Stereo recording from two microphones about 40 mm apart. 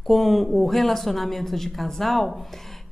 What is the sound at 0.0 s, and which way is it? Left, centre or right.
A woman's voice, centre.